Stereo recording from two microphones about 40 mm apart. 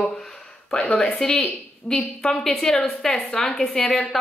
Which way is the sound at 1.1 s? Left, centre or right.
Left.